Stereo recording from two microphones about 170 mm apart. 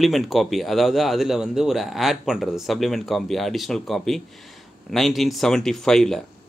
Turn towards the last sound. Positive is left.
turn(degrees=5)  # may be behind; listen again after turning